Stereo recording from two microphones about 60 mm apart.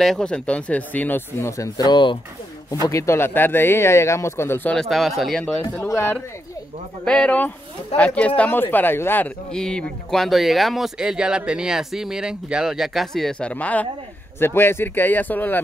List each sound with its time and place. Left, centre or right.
0.2 s speech: centre
1.4 s speech: left
3.2 s speech: left
4.7 s speech: centre
5.9 s speech: left
7.1 s speech: centre
8.5 s speech: left
9.5 s speech: centre
10.2 s speech: centre
11.0 s speech: centre
12.7 s speech: centre; by 13.8 s left
14.4 s speech: left